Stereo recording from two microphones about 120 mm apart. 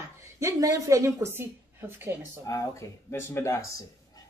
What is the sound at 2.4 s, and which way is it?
Speech, 25° left (ahead or behind).